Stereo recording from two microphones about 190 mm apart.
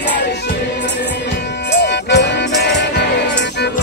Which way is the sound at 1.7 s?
65° left (ahead or behind).